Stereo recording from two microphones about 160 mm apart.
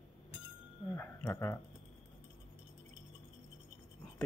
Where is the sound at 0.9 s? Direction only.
15° left (ahead or behind).